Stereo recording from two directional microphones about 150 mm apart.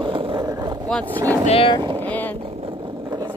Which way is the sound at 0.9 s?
10° left (ahead or behind).